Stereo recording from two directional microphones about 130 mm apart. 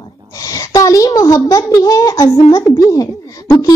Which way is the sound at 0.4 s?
25° left (ahead or behind).